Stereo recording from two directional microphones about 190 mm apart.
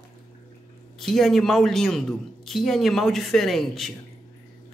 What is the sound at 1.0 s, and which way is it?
A man's voice, centre (ahead or behind).